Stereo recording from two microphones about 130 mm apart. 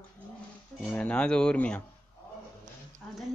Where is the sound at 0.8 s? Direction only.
10° left (ahead or behind).